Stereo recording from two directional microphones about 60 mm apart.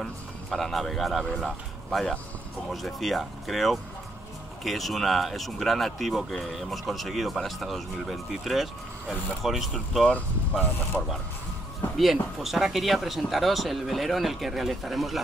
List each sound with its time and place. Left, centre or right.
0.0 s music: centre
1.4 s speech: centre
10.9 s speech: centre
12.0 s speech: centre